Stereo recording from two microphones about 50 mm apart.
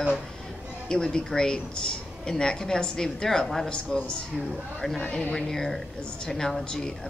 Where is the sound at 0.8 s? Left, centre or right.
Centre.